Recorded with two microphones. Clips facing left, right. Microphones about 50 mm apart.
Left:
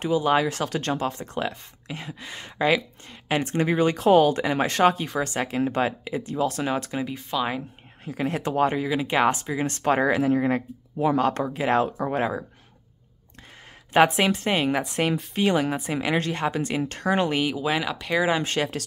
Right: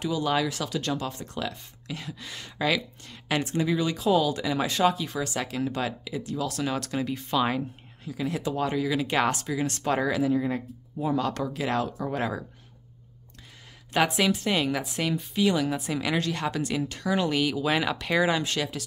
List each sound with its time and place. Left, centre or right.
0.0 s speech: left
3.4 s speech: left; by 7.2 s centre
7.2 s speech: centre
8.0 s speech: left
11.1 s speech: left
13.9 s speech: left
16.9 s speech: left
17.6 s speech: centre
18.4 s speech: left